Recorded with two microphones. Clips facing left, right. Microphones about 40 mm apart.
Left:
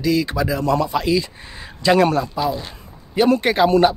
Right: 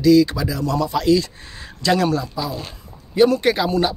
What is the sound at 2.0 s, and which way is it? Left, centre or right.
Speech, left.